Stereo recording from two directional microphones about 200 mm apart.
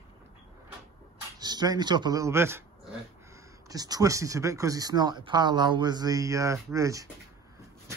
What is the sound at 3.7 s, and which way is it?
Speech, 20° right (ahead or behind).